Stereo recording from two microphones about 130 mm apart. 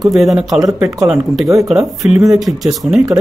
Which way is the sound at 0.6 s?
25° right (ahead or behind).